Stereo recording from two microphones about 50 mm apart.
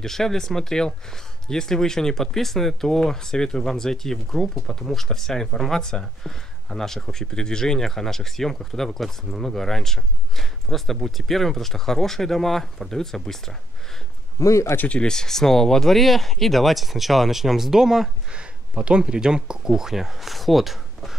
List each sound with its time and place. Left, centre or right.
0.0 s speech: centre
14.4 s speech: left
14.8 s speech: left
15.0 s speech: centre
18.3 s speech: centre